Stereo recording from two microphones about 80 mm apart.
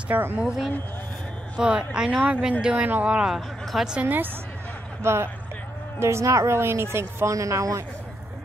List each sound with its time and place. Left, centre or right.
0.1 s speech: right
0.4 s speech: centre
3.3 s speech: centre
4.0 s speech: right